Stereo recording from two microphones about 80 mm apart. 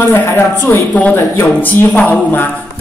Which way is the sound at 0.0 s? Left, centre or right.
Left.